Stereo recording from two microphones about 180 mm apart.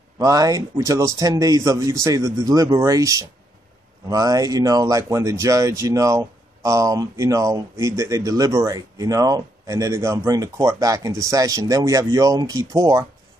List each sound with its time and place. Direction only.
0.2 s speech: 20° right (ahead or behind)